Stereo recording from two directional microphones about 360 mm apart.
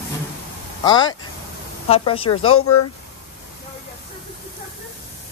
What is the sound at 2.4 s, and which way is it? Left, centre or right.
Speech, left.